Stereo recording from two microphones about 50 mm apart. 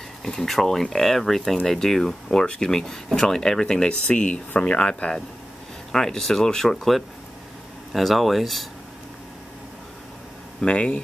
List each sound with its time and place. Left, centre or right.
0.2 s speech: centre
5.9 s speech: centre
10.6 s speech: left